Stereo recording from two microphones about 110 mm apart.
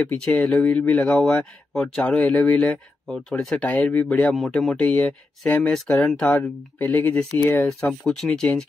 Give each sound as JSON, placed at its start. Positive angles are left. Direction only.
{"t": 0.0, "sound": "speech", "side_deg": 10}
{"t": 6.3, "sound": "speech", "side_deg": 15}
{"t": 8.0, "sound": "speech", "side_deg": 5}